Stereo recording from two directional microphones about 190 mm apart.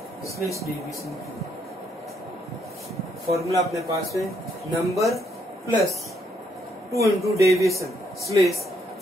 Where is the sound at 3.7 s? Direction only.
15° right (ahead or behind).